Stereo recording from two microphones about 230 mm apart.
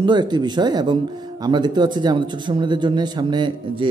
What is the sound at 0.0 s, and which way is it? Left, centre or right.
Speech, centre.